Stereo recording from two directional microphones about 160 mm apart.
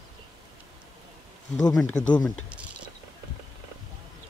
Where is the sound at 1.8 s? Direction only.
5° left (ahead or behind).